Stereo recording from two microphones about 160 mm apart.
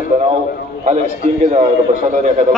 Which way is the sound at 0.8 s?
45° right (ahead or behind).